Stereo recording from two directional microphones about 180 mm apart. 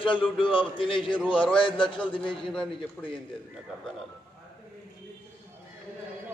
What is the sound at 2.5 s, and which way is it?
Speech, 5° left (ahead or behind).